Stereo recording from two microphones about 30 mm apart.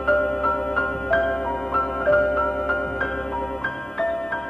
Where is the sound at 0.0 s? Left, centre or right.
Centre.